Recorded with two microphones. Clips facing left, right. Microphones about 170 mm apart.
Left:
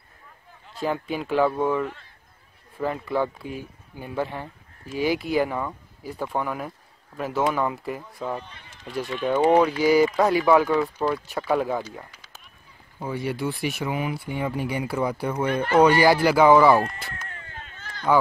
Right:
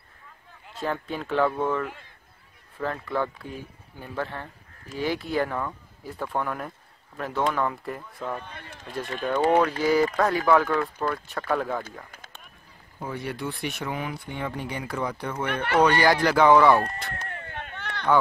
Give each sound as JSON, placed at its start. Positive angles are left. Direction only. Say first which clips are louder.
{"t": 0.7, "sound": "speech", "louder": "left 3 dB", "side_deg": 5}
{"t": 8.4, "sound": "speech", "louder": "even", "side_deg": -55}
{"t": 9.2, "sound": "speech", "louder": "left 3 dB", "side_deg": 10}
{"t": 10.1, "sound": "speech", "louder": "left 3 dB", "side_deg": 15}
{"t": 13.0, "sound": "speech", "louder": "left 4 dB", "side_deg": 5}
{"t": 17.1, "sound": "a sound", "louder": "right 3 dB", "side_deg": -40}
{"t": 17.5, "sound": "a sound", "louder": "right 6 dB", "side_deg": -60}